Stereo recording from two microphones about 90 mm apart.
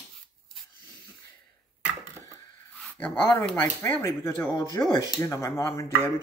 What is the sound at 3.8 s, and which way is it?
Speech, 25° left (ahead or behind).